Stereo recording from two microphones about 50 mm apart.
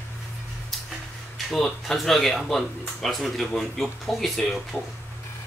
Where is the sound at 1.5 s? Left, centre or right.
Centre.